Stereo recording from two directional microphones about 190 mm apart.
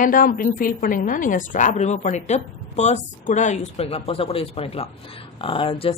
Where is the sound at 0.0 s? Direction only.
45° left (ahead or behind).